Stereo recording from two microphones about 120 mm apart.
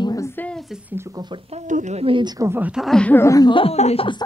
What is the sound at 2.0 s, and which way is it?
Speech, 45° right (ahead or behind).